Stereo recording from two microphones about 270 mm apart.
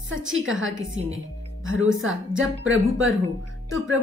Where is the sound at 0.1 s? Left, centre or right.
Right.